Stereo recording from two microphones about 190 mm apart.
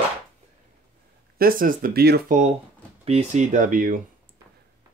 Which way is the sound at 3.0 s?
30° right (ahead or behind).